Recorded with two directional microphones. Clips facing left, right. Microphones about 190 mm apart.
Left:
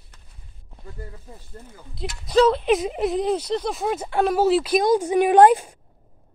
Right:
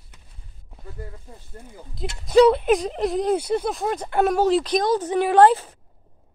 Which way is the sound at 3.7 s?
5° left (ahead or behind).